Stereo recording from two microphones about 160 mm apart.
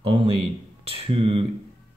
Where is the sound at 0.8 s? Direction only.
35° right (ahead or behind).